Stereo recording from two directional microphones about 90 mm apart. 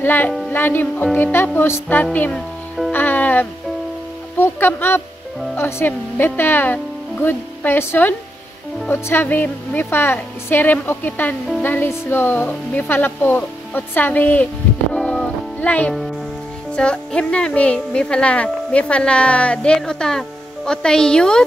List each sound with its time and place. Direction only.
0.0 s a woman's voice: 20° left (ahead or behind)
2.9 s music: 20° left (ahead or behind)
5.6 s a woman's voice: 25° left (ahead or behind); by 21.5 s 10° left (ahead or behind)